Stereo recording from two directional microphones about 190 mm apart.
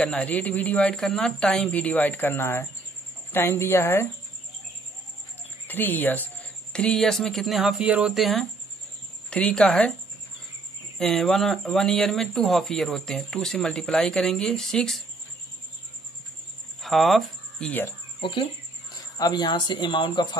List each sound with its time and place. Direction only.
0.0 s speech: 5° left (ahead or behind)
5.7 s speech: 10° left (ahead or behind)
11.0 s speech: centre (ahead or behind)
16.8 s speech: centre (ahead or behind)
18.2 s speech: 25° left (ahead or behind)